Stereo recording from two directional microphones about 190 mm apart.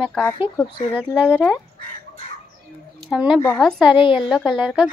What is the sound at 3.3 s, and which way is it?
Speech, 10° left (ahead or behind).